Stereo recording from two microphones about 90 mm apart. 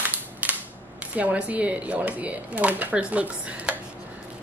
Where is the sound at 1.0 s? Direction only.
15° right (ahead or behind).